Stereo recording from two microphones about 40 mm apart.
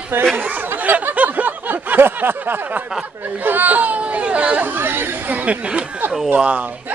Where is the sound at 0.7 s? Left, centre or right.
Right.